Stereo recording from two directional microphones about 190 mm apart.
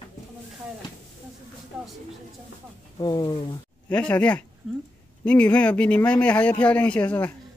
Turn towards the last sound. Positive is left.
turn(degrees=10)  # may be behind; listen again after turning